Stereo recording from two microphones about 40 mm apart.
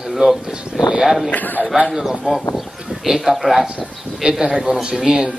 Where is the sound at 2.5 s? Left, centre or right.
Centre.